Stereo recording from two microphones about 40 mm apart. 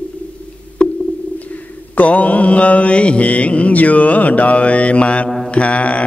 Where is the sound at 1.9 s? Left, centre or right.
Left.